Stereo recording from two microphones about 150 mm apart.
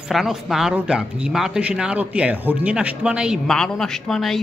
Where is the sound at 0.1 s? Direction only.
Centre (ahead or behind).